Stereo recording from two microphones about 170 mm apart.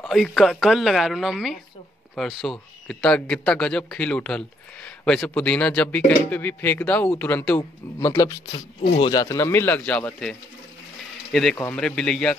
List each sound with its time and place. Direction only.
0.0 s a woman's voice: 5° left (ahead or behind)
11.5 s speech: 15° left (ahead or behind)
11.8 s a woman's voice: 5° left (ahead or behind)